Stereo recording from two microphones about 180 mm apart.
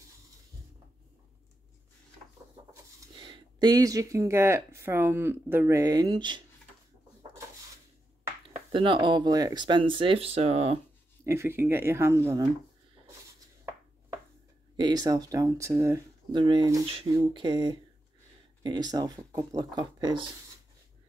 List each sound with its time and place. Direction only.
3.2 s speech: 25° right (ahead or behind)
8.7 s speech: 25° right (ahead or behind)
11.2 s speech: 15° right (ahead or behind)
14.8 s speech: 20° right (ahead or behind)